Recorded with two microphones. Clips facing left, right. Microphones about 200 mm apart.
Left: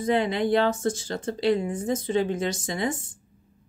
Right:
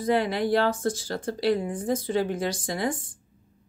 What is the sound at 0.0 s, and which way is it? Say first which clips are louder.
Speech: left 1 dB; 20° left (ahead or behind).